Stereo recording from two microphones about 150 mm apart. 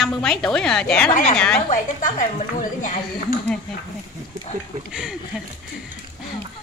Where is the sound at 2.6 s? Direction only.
60° left (ahead or behind).